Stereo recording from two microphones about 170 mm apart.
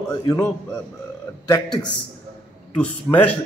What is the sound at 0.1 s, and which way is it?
Speech, 20° left (ahead or behind).